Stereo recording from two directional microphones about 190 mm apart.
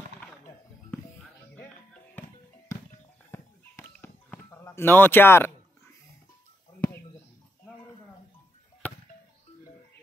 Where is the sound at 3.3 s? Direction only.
10° left (ahead or behind).